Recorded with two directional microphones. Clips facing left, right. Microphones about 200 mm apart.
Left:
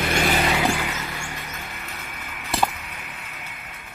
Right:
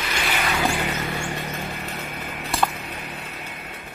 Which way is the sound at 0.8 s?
25° right (ahead or behind).